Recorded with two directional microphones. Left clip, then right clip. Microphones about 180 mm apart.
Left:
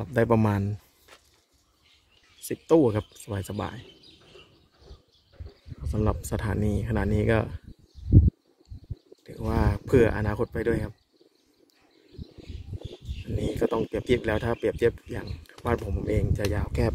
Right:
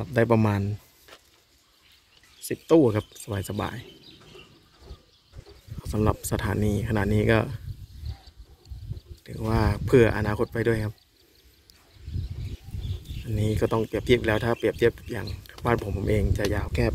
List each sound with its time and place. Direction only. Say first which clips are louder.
0.0 s speech: right 1 dB; 15° left (ahead or behind)
2.4 s speech: right 1 dB; 20° left (ahead or behind)
2.9 s speech: right 2 dB; 5° left (ahead or behind)
5.9 s speech: right 3 dB; 5° right (ahead or behind)
9.2 s speech: right 2 dB; 5° left (ahead or behind)
13.4 s speech: right 1 dB; 5° left (ahead or behind)